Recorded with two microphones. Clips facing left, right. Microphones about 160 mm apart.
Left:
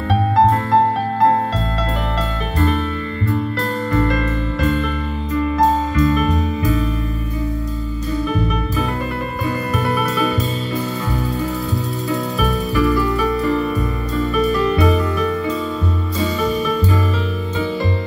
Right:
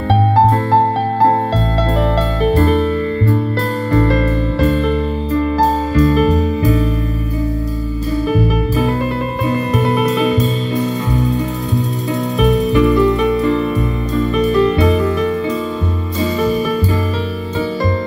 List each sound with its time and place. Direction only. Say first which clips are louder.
0.1 s music: right 2 dB; 30° right (ahead or behind)
3.9 s music: right 5 dB; 35° right (ahead or behind)
9.5 s music: right 4 dB; 25° right (ahead or behind)
12.4 s music: right 8 dB; 20° right (ahead or behind)